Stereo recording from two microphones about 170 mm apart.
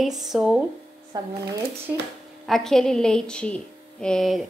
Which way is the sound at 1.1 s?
25° right (ahead or behind).